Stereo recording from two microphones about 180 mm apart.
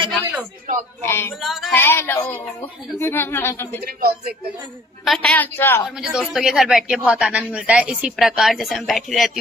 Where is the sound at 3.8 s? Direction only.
60° right (ahead or behind).